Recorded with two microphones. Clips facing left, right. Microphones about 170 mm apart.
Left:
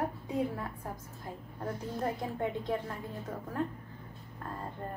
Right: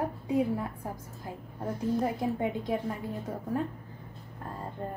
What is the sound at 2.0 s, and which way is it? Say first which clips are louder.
Speech: right 4 dB; 10° right (ahead or behind).